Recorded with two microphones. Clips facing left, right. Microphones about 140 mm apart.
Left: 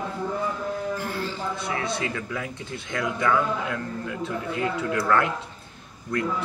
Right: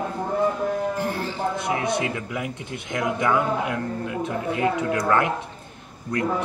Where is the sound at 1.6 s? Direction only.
20° right (ahead or behind).